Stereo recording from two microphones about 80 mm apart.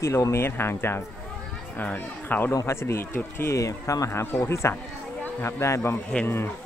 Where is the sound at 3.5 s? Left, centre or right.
Left.